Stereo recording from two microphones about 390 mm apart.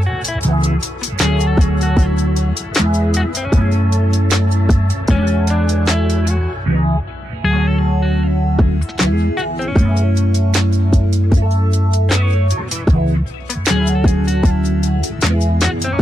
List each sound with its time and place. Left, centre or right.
1.1 s music: centre
3.2 s music: centre
3.6 s music: left
4.6 s music: centre
7.4 s music: centre
13.7 s music: centre